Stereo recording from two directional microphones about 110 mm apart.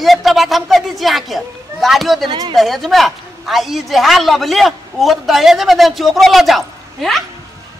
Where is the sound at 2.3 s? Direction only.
45° right (ahead or behind).